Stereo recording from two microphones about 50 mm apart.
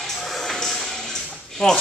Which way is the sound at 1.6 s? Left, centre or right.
Centre.